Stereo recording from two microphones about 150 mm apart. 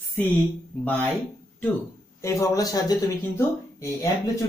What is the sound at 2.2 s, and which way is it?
Speech, 20° left (ahead or behind).